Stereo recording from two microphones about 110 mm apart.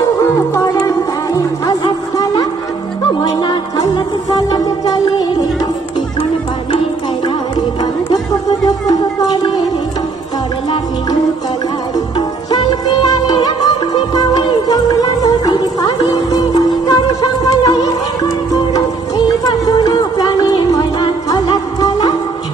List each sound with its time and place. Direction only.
0.2 s music: 25° left (ahead or behind)
3.2 s music: 40° left (ahead or behind)
7.8 s music: 35° left (ahead or behind)
12.2 s music: 40° left (ahead or behind)